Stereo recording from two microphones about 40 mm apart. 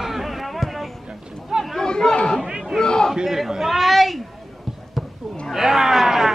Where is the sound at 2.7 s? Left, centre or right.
Centre.